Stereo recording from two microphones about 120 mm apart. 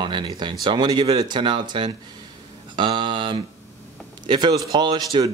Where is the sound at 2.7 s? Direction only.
40° right (ahead or behind).